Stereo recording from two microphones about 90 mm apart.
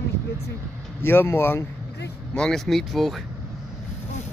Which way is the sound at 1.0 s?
25° left (ahead or behind).